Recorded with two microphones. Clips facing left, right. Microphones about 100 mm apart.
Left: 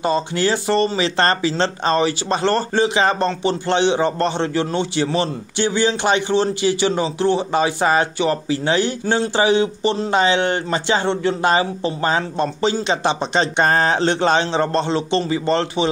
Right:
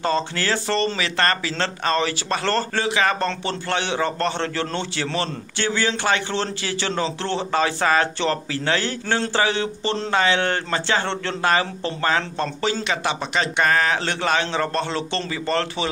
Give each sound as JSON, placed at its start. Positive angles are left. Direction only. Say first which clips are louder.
{"t": 0.0, "sound": "speech", "louder": "left 4 dB", "side_deg": 15}